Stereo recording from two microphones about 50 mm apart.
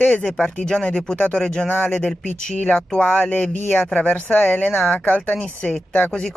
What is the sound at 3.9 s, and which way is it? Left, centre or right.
Speech, left.